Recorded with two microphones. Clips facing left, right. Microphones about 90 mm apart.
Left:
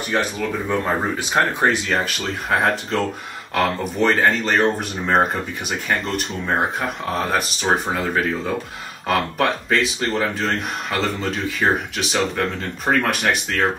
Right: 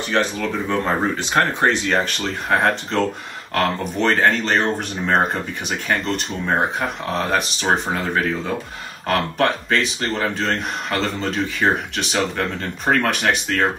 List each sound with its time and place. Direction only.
0.2 s speech: 10° left (ahead or behind)